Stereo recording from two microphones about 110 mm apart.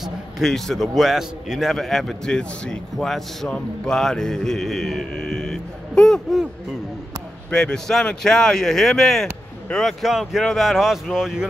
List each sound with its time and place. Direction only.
0.0 s a man's voice: centre (ahead or behind)
7.5 s a man's voice: 5° left (ahead or behind)